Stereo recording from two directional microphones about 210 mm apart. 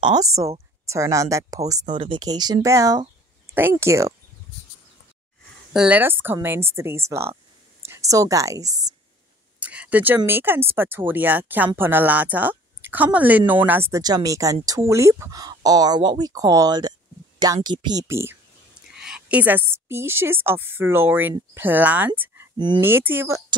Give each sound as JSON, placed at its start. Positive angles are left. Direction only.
{"t": 0.0, "sound": "a woman's voice", "side_deg": -20}
{"t": 5.7, "sound": "a woman's voice", "side_deg": -5}